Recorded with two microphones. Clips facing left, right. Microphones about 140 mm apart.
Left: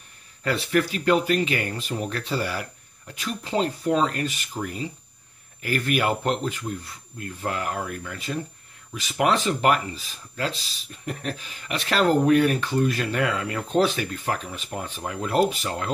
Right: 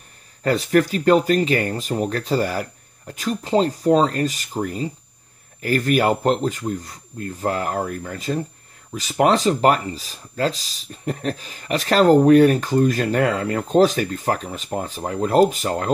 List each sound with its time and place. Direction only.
0.4 s speech: 40° right (ahead or behind)